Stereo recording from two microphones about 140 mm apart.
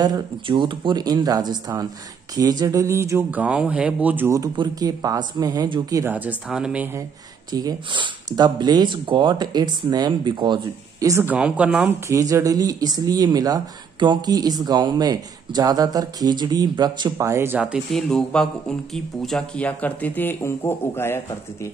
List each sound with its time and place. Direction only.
0.0 s speech: 30° right (ahead or behind); by 4.4 s 15° right (ahead or behind)
4.4 s speech: 25° right (ahead or behind)
6.1 s speech: 10° right (ahead or behind)
7.5 s speech: 30° right (ahead or behind)
11.2 s speech: 10° right (ahead or behind)
12.1 s speech: 20° right (ahead or behind)
17.9 s speech: 5° left (ahead or behind)